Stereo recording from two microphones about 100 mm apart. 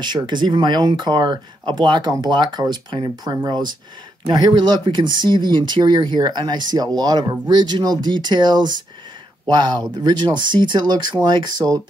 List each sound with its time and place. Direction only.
0.0 s speech: 50° right (ahead or behind)